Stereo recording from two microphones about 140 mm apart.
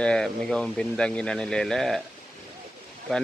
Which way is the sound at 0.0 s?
5° left (ahead or behind).